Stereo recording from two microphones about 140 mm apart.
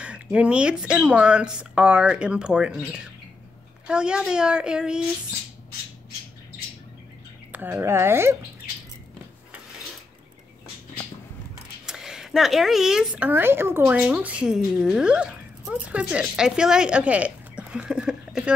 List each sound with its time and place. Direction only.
0.0 s speech: 10° right (ahead or behind)
7.5 s speech: 15° right (ahead or behind)
11.8 s speech: 5° right (ahead or behind)